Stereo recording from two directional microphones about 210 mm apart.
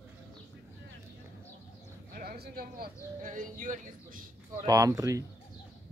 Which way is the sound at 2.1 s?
45° right (ahead or behind).